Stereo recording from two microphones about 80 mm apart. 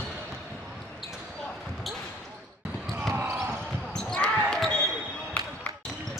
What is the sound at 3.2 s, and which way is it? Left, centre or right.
Basketball bounce, right.